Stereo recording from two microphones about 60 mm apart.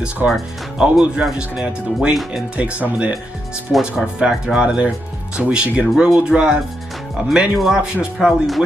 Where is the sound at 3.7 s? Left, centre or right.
Centre.